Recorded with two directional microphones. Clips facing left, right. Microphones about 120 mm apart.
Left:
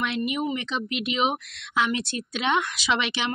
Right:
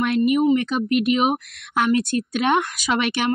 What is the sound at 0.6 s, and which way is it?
Speech, 50° right (ahead or behind).